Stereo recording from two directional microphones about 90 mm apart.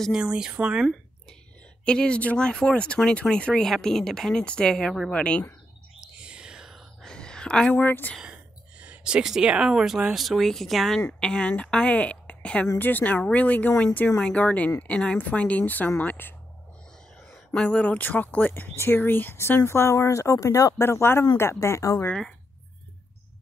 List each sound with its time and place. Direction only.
0.1 s speech: 10° right (ahead or behind)
1.9 s speech: 10° left (ahead or behind)
5.1 s speech: 15° left (ahead or behind)
5.9 s whispering: 10° right (ahead or behind)
7.1 s a sound: 10° left (ahead or behind)
7.7 s speech: 20° left (ahead or behind)
8.2 s speech: 10° right (ahead or behind); by 16.3 s 20° left (ahead or behind)
17.6 s speech: 10° left (ahead or behind)
18.5 s speech: 25° left (ahead or behind)